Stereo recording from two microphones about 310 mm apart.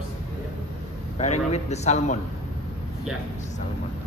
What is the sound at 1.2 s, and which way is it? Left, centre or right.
A man's voice, left.